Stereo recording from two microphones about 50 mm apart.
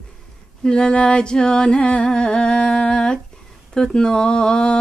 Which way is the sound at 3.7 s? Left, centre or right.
Centre.